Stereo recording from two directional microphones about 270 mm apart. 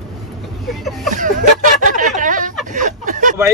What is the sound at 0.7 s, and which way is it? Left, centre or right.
Vehicle, centre.